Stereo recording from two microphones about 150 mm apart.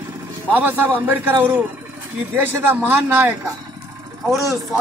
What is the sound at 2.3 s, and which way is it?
Speech, 15° right (ahead or behind).